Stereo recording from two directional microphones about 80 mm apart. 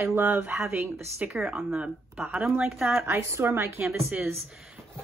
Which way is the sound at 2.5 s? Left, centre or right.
Centre.